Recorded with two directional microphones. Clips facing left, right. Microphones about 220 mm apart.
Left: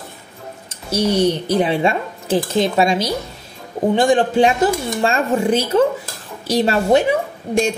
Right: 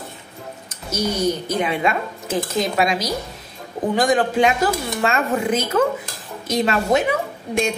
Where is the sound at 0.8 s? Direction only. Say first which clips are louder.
Left 5 dB; 30° left (ahead or behind).